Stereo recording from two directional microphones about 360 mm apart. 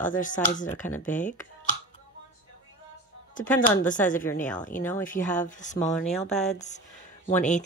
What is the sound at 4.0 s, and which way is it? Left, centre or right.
Speech, centre.